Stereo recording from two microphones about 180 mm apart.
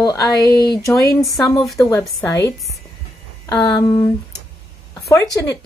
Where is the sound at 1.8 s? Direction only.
15° left (ahead or behind).